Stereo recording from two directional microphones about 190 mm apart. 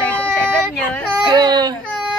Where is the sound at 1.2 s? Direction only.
20° right (ahead or behind).